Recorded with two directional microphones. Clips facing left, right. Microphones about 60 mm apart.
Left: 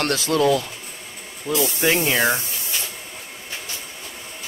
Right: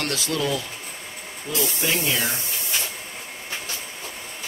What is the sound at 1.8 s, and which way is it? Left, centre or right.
Speech, left.